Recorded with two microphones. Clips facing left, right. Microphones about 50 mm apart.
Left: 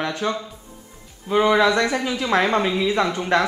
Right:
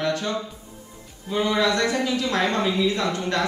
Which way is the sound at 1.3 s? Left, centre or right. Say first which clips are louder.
Left 6 dB; left.